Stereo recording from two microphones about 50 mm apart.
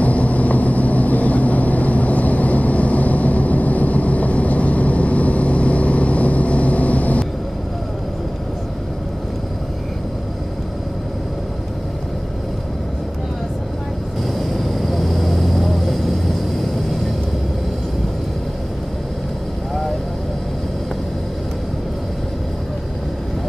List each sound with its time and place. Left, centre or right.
0.0 s vehicle: left
14.5 s vehicle: centre